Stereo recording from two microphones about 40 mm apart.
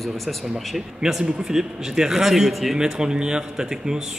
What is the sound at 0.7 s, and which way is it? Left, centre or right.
Speech, centre.